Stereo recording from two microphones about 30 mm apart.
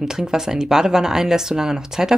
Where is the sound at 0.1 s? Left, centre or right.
Centre.